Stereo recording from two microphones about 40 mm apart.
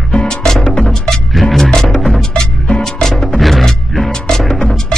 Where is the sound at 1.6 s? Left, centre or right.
Centre.